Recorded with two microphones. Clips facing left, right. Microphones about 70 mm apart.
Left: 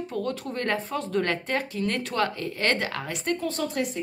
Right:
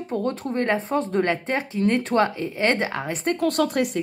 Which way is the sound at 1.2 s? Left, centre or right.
Right.